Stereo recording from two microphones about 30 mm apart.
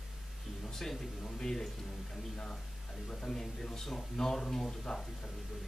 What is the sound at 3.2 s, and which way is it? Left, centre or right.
Speech, centre.